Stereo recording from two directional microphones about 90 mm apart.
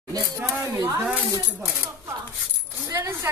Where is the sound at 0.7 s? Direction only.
40° right (ahead or behind).